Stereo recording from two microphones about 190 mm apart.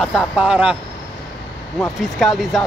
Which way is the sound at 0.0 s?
Centre (ahead or behind).